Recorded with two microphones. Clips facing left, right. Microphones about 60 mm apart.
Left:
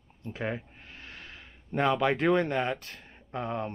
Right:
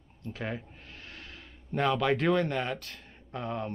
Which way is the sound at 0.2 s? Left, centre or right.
Left.